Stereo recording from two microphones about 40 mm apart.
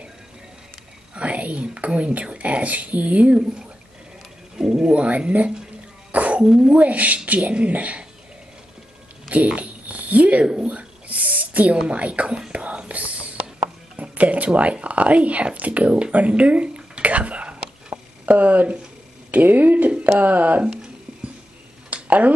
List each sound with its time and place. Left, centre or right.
1.1 s speech: right
4.6 s speech: centre
4.9 s speech: right
6.1 s cough: right
6.4 s speech: right
6.8 s speech: right
9.6 s a sound: right
10.4 s a sound: right
11.9 s speech: right
12.5 s whispering: right
13.9 s speech: right
20.6 s a sound: right
21.9 s a sound: right